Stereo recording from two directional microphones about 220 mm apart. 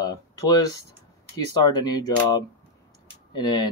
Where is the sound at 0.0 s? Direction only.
15° left (ahead or behind).